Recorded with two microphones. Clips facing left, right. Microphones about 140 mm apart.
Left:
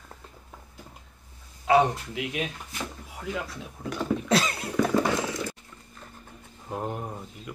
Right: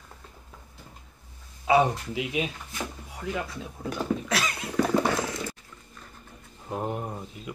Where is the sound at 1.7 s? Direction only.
Centre (ahead or behind).